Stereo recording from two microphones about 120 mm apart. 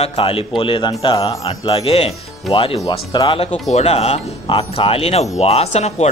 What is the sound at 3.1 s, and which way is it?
Speech, 35° left (ahead or behind).